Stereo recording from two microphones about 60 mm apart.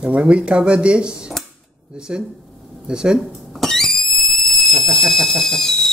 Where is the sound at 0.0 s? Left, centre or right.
Centre.